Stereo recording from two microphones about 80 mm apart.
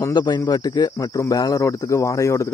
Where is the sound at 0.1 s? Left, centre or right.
Left.